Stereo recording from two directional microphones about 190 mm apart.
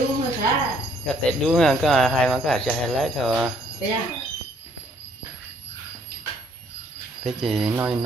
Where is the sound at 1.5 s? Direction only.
Centre (ahead or behind).